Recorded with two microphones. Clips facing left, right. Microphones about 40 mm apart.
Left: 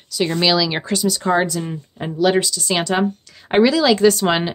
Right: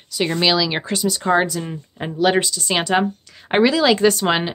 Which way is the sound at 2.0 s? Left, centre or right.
Right.